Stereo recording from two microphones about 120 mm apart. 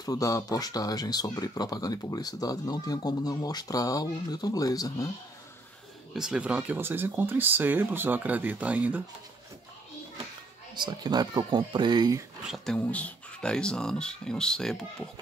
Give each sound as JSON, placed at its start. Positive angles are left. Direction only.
{"t": 0.0, "sound": "speech", "side_deg": 30}
{"t": 6.1, "sound": "speech", "side_deg": -5}
{"t": 10.7, "sound": "speech", "side_deg": -35}
{"t": 12.4, "sound": "speech", "side_deg": 0}
{"t": 12.7, "sound": "speech", "side_deg": 10}